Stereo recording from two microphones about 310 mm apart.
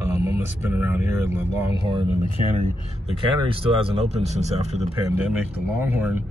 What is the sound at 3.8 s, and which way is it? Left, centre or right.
Speech, centre.